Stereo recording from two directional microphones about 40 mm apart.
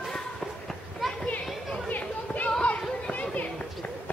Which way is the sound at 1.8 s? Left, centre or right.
Left.